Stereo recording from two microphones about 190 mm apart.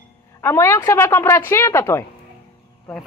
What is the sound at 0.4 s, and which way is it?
A woman's voice, 10° left (ahead or behind).